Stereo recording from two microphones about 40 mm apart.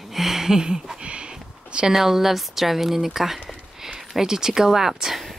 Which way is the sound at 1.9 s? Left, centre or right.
Centre.